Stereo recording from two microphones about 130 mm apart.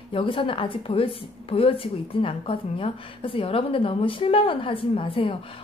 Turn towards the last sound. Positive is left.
turn(degrees=45)  # may be behind; listen again after turning